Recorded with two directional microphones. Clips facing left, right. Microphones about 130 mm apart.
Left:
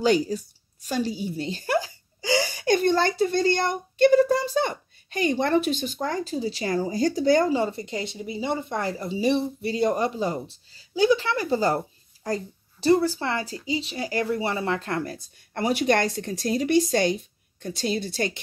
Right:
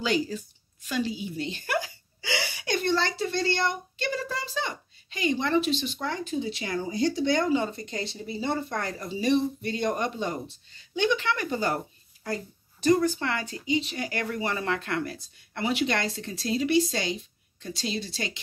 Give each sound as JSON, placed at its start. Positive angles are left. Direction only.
{"t": 0.0, "sound": "speech", "side_deg": 45}
{"t": 7.6, "sound": "speech", "side_deg": 25}
{"t": 12.8, "sound": "a woman's voice", "side_deg": 30}